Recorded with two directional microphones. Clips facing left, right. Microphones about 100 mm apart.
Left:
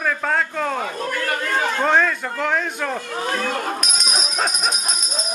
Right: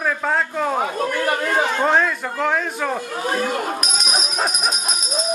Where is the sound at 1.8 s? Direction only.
5° right (ahead or behind).